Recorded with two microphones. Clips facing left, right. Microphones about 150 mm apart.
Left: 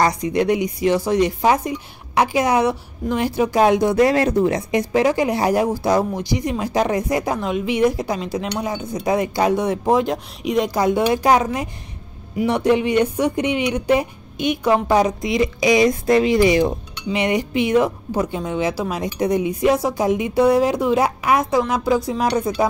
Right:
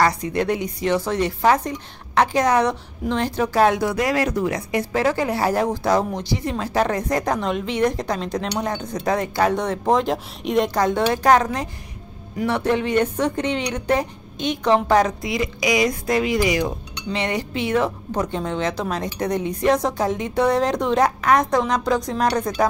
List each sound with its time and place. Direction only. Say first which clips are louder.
0.0 s a woman's voice: left 2 dB; 15° left (ahead or behind)
15.2 s speech: left 5 dB; 25° left (ahead or behind)
17.1 s a woman's voice: left 4 dB; 15° left (ahead or behind)